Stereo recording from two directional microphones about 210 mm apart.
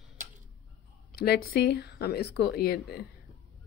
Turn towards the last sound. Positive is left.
turn(degrees=50)  # may be behind; listen again after turning